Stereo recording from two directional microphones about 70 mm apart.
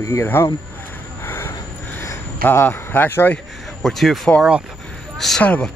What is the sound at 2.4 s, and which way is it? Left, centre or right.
Speech, left.